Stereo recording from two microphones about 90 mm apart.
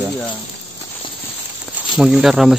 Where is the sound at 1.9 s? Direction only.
5° right (ahead or behind).